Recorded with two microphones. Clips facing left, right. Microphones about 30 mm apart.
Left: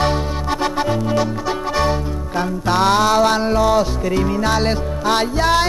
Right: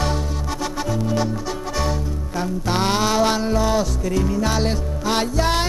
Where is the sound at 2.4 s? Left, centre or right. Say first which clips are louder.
Left 5 dB; left.